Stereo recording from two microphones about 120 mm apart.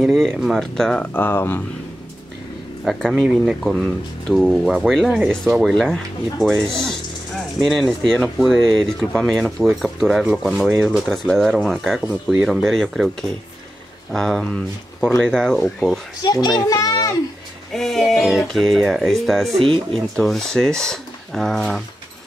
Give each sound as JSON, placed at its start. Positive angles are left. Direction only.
{"t": 0.0, "sound": "speech", "side_deg": 0}
{"t": 1.1, "sound": "speech", "side_deg": 15}
{"t": 2.8, "sound": "speech", "side_deg": 0}
{"t": 12.4, "sound": "speech", "side_deg": 5}
{"t": 14.1, "sound": "speech", "side_deg": 5}
{"t": 16.2, "sound": "a child's voice", "side_deg": 35}
{"t": 17.7, "sound": "speech", "side_deg": 5}
{"t": 19.6, "sound": "speech", "side_deg": -50}
{"t": 20.2, "sound": "speech", "side_deg": 5}